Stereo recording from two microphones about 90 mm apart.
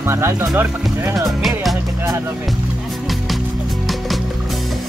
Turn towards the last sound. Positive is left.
turn(degrees=0)  # may be behind; listen again after turning